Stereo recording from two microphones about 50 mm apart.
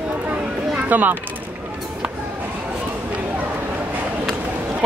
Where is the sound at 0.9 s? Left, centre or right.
Right.